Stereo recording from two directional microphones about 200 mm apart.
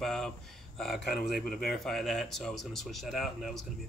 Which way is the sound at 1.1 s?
50° left (ahead or behind).